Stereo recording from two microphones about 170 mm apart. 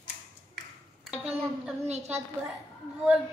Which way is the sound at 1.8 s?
40° right (ahead or behind).